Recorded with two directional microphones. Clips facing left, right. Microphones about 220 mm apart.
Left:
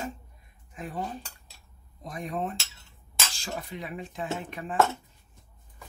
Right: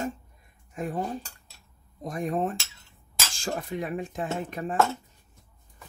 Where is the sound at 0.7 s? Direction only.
45° right (ahead or behind).